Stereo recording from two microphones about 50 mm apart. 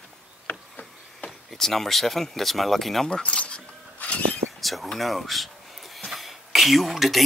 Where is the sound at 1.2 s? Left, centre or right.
Centre.